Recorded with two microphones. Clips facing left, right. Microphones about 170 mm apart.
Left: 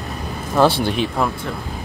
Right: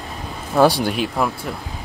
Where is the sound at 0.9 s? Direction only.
5° right (ahead or behind).